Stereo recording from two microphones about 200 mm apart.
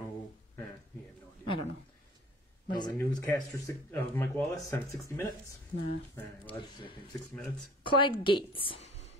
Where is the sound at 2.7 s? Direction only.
20° left (ahead or behind).